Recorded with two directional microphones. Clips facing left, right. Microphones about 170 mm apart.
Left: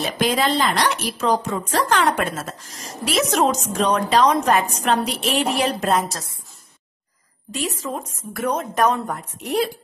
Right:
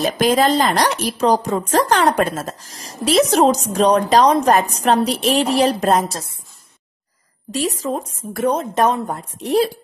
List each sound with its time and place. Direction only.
0.0 s speech: 45° right (ahead or behind); by 6.3 s 30° right (ahead or behind)
7.5 s a woman's voice: 35° right (ahead or behind)